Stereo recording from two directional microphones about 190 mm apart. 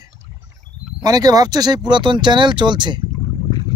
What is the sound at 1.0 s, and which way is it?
Speech, 20° right (ahead or behind).